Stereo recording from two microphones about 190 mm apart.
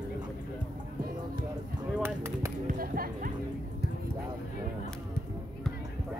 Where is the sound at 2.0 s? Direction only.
10° right (ahead or behind).